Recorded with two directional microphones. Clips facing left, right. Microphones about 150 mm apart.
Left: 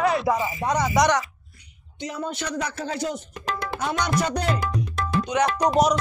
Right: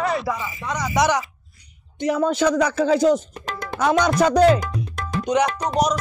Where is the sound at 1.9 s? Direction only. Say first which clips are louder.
Right 10 dB; 80° right.